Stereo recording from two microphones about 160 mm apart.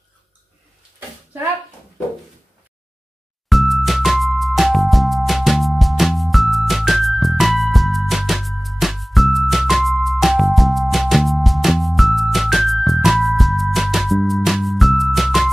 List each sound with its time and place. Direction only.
3.4 s music: centre (ahead or behind)